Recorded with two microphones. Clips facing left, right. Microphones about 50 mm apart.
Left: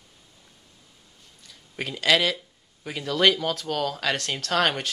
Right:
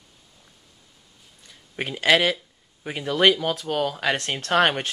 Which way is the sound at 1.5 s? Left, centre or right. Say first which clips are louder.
Right 2 dB; right.